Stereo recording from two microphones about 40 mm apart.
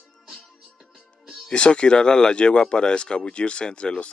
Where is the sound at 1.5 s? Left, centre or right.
Left.